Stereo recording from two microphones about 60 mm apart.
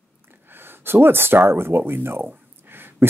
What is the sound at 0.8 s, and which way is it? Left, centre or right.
Speech, right.